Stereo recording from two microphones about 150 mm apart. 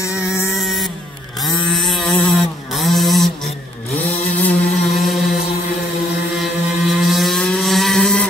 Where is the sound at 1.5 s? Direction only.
30° left (ahead or behind).